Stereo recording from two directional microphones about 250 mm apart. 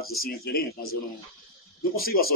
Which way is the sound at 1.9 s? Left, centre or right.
Left.